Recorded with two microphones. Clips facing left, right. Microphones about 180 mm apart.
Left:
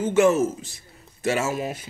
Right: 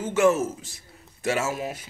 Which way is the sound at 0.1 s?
5° right (ahead or behind).